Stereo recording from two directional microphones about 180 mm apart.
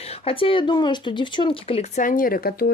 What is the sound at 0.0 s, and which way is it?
Speech, 35° left (ahead or behind).